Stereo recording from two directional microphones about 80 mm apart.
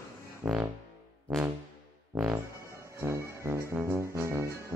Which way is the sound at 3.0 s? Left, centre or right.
Right.